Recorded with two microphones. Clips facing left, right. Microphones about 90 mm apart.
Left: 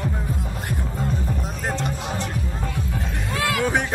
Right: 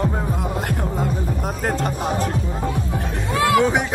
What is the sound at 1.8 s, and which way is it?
Music, 45° right (ahead or behind).